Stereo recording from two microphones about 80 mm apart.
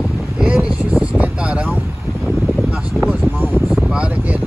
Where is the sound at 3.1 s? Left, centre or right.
Right.